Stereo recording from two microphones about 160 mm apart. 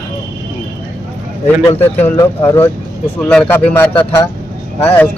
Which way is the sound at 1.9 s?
15° left (ahead or behind).